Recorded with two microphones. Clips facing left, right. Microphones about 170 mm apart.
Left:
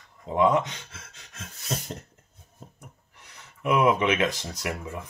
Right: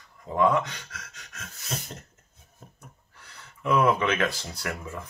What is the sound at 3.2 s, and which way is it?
Speech, 20° left (ahead or behind).